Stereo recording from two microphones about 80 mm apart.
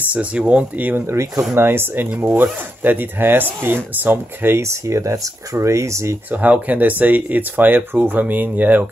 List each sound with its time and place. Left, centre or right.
0.1 s speech: centre
1.1 s speech: right
1.5 s speech: right
6.3 s speech: centre